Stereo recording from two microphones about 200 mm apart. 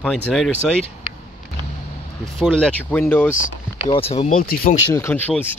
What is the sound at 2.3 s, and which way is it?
Speech, 5° left (ahead or behind).